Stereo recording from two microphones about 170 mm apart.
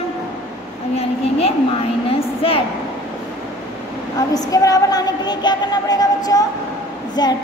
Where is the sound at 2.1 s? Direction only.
35° left (ahead or behind).